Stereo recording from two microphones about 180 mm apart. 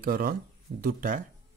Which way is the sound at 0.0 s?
55° right (ahead or behind).